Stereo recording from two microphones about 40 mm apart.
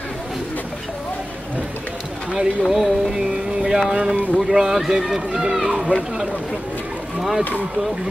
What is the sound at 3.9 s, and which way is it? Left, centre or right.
Speech, centre.